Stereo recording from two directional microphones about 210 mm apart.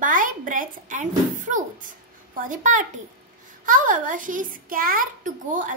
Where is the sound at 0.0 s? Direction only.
40° right (ahead or behind).